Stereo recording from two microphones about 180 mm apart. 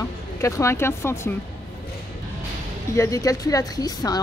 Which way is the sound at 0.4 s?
15° left (ahead or behind).